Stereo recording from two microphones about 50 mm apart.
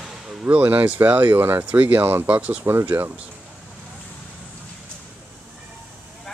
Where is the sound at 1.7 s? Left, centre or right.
Right.